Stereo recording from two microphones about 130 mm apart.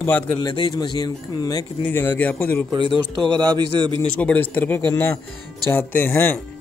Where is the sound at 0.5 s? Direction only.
35° left (ahead or behind).